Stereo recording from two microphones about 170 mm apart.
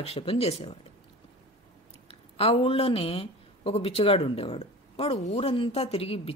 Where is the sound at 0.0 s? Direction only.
35° left (ahead or behind).